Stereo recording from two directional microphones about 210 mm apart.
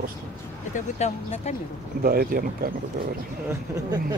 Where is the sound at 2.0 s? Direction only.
45° right (ahead or behind).